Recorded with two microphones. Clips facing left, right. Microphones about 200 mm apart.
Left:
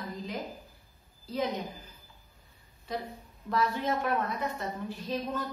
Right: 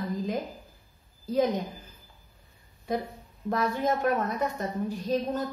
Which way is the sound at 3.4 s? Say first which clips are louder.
Right 3 dB; 45° right (ahead or behind).